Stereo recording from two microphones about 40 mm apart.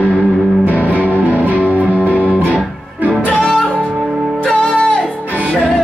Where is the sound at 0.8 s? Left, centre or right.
Left.